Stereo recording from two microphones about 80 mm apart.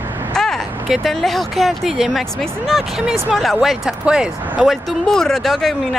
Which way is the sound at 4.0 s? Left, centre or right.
Centre.